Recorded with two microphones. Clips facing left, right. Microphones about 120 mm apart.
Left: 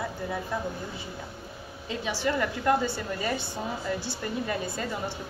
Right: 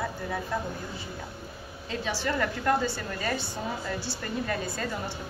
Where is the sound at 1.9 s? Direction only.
15° left (ahead or behind).